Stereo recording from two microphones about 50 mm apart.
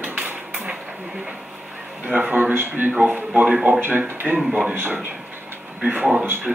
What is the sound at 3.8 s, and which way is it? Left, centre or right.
Speech, right.